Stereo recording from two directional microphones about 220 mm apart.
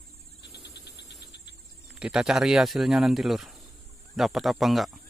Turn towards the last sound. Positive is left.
turn(degrees=0)  # may be behind; listen again after turning